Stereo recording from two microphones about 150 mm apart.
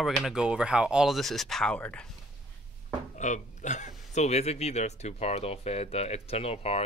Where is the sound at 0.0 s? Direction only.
Centre (ahead or behind).